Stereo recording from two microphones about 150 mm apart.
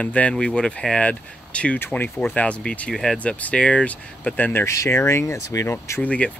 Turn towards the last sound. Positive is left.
turn(degrees=10)  # may be behind; listen again after turning